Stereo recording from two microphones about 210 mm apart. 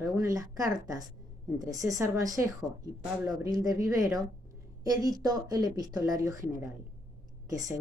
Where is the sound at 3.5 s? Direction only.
15° right (ahead or behind).